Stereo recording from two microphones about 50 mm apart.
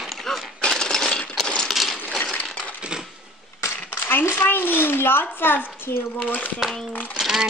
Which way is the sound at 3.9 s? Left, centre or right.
Left.